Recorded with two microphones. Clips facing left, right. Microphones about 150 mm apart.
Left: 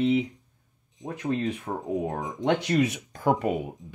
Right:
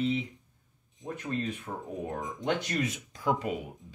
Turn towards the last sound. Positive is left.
turn(degrees=55)  # may be behind; listen again after turning